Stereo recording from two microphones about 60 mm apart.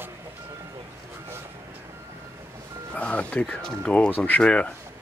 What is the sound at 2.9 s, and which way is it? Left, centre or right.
Speech, left.